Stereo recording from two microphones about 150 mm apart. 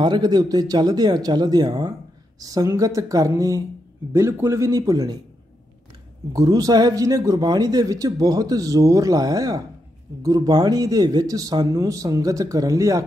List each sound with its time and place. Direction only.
0.0 s a man's voice: 30° right (ahead or behind)
6.3 s a man's voice: 25° right (ahead or behind)